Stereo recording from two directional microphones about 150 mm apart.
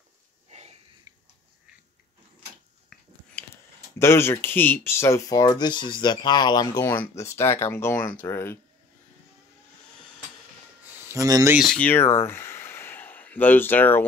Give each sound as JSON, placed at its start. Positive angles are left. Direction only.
{"t": 0.5, "sound": "wheeze", "side_deg": -45}
{"t": 4.0, "sound": "speech", "side_deg": 15}
{"t": 11.1, "sound": "speech", "side_deg": -25}
{"t": 11.5, "sound": "speech", "side_deg": 5}